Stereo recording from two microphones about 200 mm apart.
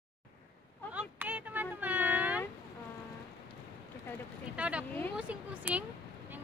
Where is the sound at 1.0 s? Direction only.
10° right (ahead or behind).